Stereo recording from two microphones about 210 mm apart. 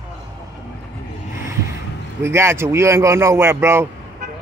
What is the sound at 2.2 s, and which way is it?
Speech, 10° right (ahead or behind).